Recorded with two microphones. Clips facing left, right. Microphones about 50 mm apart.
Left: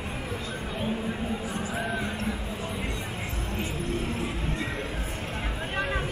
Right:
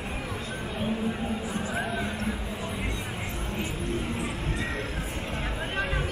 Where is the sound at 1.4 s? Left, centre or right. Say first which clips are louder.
Even; centre.